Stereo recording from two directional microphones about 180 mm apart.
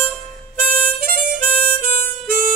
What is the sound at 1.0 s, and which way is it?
Harmonica, 55° right (ahead or behind).